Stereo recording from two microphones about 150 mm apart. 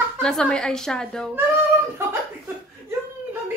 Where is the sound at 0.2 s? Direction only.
5° left (ahead or behind).